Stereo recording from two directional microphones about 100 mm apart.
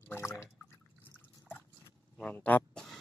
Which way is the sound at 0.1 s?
25° left (ahead or behind).